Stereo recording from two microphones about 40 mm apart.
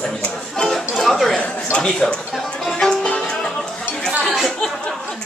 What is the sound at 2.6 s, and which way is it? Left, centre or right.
Music, centre.